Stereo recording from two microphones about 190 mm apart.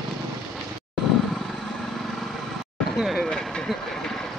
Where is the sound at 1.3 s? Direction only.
Centre (ahead or behind).